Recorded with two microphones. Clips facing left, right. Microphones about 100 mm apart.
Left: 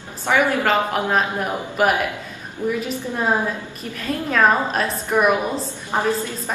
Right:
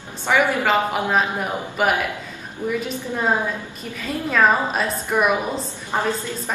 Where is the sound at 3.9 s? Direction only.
Centre (ahead or behind).